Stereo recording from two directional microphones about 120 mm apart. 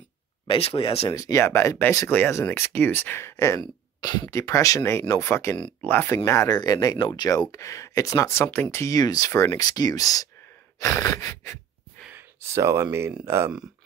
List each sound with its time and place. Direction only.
0.5 s speech: 55° left (ahead or behind)
1.1 s speech: 25° left (ahead or behind)
6.1 s speech: 25° left (ahead or behind)
12.1 s a sound: 20° right (ahead or behind)
13.2 s speech: 25° right (ahead or behind)